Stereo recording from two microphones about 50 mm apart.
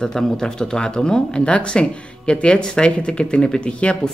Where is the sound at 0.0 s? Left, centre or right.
Centre.